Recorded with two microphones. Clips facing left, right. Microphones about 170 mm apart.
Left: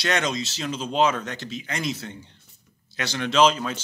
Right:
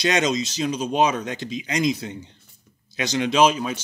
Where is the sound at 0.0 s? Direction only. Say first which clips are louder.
Right 4 dB; 15° right (ahead or behind).